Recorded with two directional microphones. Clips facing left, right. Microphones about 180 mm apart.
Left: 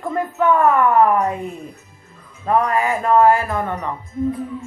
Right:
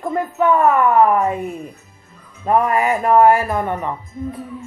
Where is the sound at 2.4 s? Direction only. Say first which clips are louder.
Right 2 dB; 20° right (ahead or behind).